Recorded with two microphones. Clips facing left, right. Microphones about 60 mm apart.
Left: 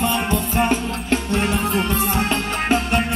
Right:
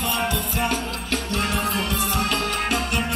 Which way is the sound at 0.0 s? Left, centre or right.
Left.